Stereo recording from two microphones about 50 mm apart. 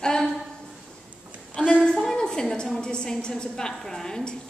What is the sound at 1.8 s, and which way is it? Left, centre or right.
A woman's voice, centre.